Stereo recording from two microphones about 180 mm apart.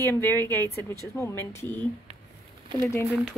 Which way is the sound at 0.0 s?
10° left (ahead or behind).